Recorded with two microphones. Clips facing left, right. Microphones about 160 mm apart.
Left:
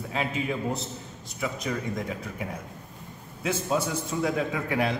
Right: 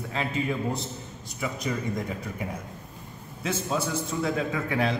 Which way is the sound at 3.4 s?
10° left (ahead or behind).